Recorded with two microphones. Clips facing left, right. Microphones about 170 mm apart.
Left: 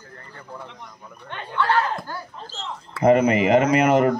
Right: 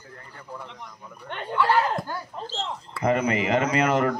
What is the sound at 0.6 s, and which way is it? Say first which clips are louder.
Speech: left 1 dB; 5° left (ahead or behind).